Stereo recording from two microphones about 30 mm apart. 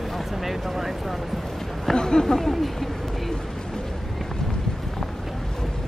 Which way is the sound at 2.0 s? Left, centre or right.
Left.